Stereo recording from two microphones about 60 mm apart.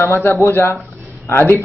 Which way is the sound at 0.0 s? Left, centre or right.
Left.